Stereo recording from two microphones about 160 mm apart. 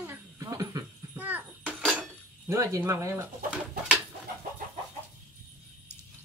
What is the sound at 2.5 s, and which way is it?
Speech, 20° right (ahead or behind).